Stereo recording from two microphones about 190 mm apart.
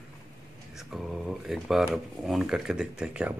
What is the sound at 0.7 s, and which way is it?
Speech, centre (ahead or behind).